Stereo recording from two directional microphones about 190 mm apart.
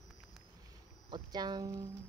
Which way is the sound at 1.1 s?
20° right (ahead or behind).